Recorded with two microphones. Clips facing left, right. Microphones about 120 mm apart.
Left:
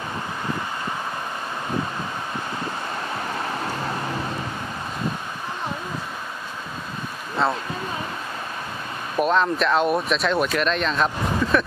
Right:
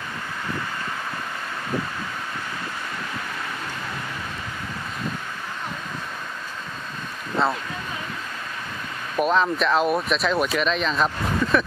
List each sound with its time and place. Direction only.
3.4 s vehicle: 35° left (ahead or behind)
7.4 s speech: centre (ahead or behind)
9.1 s speech: centre (ahead or behind)